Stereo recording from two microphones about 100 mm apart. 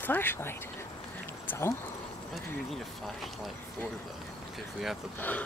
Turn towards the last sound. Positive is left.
turn(degrees=20)  # may be behind; listen again after turning